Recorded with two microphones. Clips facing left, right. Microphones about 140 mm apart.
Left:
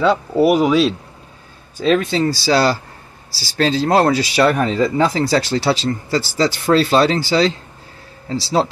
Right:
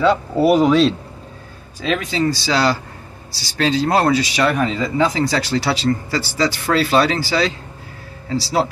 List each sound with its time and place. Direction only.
0.0 s speech: 10° left (ahead or behind)
1.8 s speech: 35° left (ahead or behind)
3.3 s speech: 5° left (ahead or behind)
3.5 s speech: 35° left (ahead or behind)
5.3 s speech: 30° left (ahead or behind)